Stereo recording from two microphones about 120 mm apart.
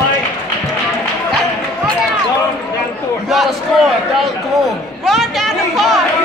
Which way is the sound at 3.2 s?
Centre (ahead or behind).